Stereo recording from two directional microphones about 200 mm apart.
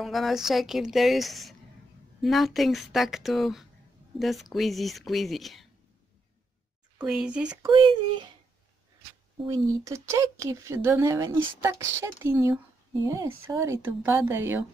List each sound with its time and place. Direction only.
0.0 s a woman's voice: centre (ahead or behind)
7.1 s a woman's voice: 5° right (ahead or behind)
7.7 s speech: 25° right (ahead or behind)
9.8 s a woman's voice: 15° right (ahead or behind)